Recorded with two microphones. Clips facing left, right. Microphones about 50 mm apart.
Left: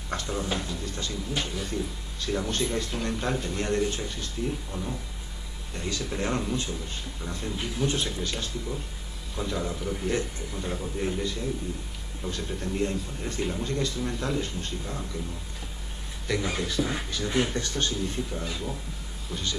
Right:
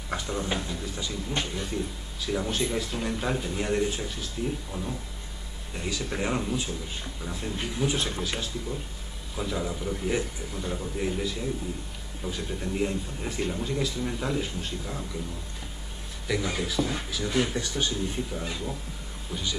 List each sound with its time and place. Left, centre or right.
0.1 s a man's voice: centre
9.3 s a man's voice: centre
16.3 s a man's voice: centre
17.6 s speech: centre